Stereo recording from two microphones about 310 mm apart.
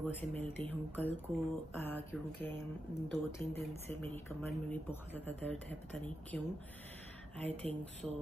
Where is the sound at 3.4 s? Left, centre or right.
Centre.